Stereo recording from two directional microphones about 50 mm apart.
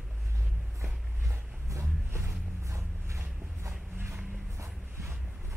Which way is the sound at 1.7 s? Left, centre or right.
Right.